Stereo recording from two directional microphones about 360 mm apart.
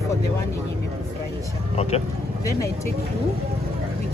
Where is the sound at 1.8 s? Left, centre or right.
Centre.